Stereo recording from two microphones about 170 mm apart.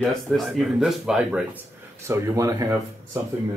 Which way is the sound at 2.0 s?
15° right (ahead or behind).